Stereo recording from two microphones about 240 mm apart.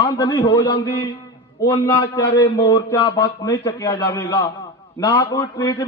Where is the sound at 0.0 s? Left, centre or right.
Centre.